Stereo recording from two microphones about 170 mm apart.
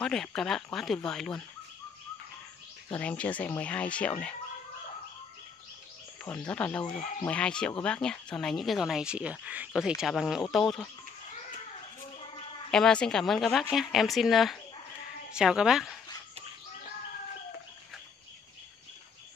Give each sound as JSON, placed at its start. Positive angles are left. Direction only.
{"t": 0.0, "sound": "speech", "side_deg": 5}
{"t": 2.9, "sound": "speech", "side_deg": 10}
{"t": 6.2, "sound": "speech", "side_deg": 10}
{"t": 6.9, "sound": "speech", "side_deg": 35}
{"t": 7.2, "sound": "speech", "side_deg": 5}
{"t": 12.7, "sound": "speech", "side_deg": 5}